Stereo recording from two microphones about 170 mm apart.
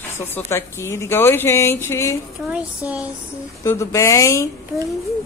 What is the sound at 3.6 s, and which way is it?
Speech, 15° left (ahead or behind).